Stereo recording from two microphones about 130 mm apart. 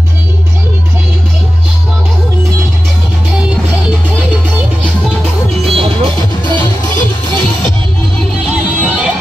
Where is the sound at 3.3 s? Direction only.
10° right (ahead or behind).